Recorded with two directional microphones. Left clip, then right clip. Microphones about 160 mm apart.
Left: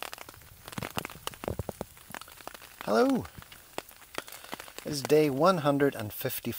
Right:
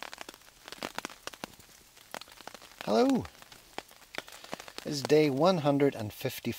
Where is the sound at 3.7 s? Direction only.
65° left (ahead or behind).